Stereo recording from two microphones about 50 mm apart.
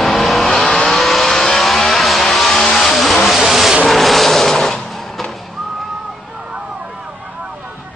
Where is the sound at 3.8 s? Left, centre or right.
Centre.